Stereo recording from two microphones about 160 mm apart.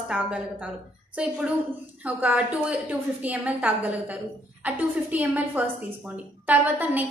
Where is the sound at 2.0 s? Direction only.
10° right (ahead or behind).